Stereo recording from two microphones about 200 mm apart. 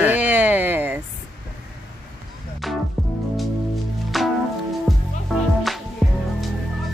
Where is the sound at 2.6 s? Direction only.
Centre (ahead or behind).